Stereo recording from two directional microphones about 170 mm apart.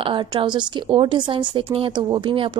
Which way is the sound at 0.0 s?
30° right (ahead or behind).